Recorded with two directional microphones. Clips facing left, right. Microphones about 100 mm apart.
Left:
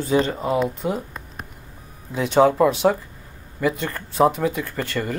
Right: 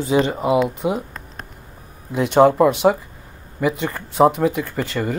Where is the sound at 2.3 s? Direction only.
10° right (ahead or behind).